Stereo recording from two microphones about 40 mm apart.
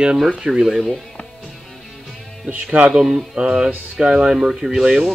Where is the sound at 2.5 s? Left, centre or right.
Right.